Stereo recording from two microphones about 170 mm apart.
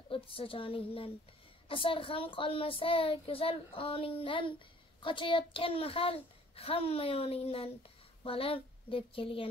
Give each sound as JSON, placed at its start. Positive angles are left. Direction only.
{"t": 0.1, "sound": "a child's voice", "side_deg": 30}